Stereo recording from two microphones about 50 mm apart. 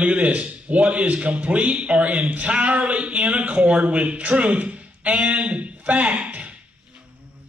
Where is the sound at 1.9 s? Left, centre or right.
Right.